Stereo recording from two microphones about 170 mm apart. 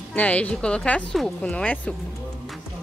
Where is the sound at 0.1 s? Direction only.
10° left (ahead or behind).